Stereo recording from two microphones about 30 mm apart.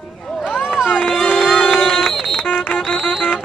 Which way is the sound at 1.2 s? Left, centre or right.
Centre.